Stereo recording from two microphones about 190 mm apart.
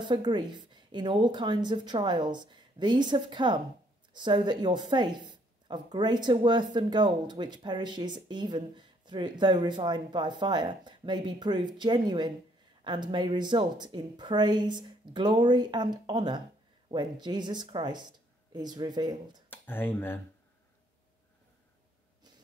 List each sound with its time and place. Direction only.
0.0 s speech: 25° right (ahead or behind)
19.5 s speech: 10° left (ahead or behind)